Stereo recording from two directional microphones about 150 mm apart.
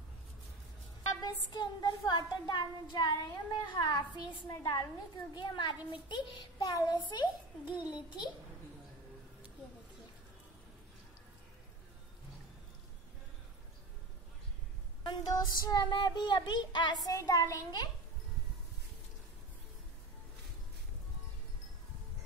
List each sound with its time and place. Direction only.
1.2 s child singing: 30° left (ahead or behind)
7.1 s a child's voice: 30° left (ahead or behind)
7.8 s child singing: 30° left (ahead or behind)
15.0 s child singing: 25° left (ahead or behind)